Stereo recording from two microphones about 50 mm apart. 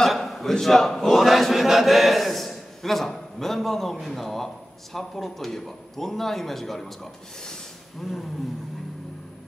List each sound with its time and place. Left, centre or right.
0.0 s a man's voice: centre
8.0 s speech: centre